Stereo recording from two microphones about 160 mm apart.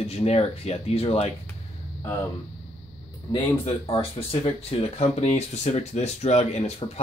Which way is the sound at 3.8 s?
35° left (ahead or behind).